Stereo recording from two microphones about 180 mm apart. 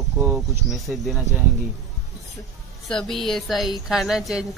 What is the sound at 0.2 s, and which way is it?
Speech, 10° right (ahead or behind).